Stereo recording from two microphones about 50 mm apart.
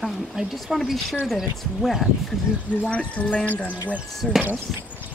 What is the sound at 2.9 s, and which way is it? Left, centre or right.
Speech, left.